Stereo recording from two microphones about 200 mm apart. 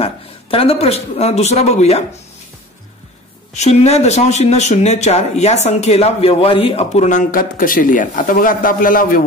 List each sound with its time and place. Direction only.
0.0 s a man's voice: 30° left (ahead or behind)
3.5 s speech: 35° left (ahead or behind)